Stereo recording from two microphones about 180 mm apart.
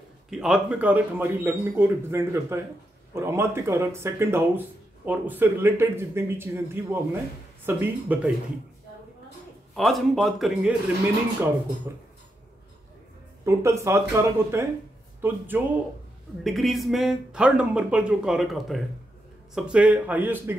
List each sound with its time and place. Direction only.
0.3 s speech: 5° right (ahead or behind)
9.8 s speech: centre (ahead or behind)
13.5 s speech: 15° right (ahead or behind)
16.4 s speech: centre (ahead or behind)